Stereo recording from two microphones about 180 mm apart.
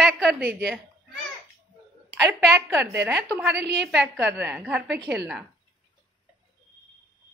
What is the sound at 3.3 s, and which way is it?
A woman's voice, 10° right (ahead or behind).